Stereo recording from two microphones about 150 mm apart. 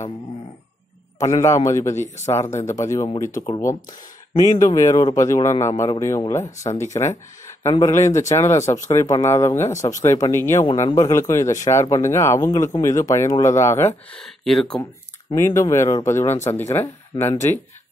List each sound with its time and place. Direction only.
1.2 s a man's voice: 20° left (ahead or behind)
8.0 s speech: 50° left (ahead or behind)
8.3 s a man's voice: 20° left (ahead or behind)
14.2 s speech: centre (ahead or behind)
15.3 s speech: 20° left (ahead or behind)